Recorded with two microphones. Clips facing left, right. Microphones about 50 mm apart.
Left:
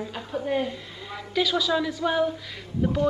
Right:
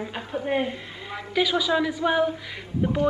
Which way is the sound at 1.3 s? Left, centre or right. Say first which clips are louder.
Right 1 dB; centre.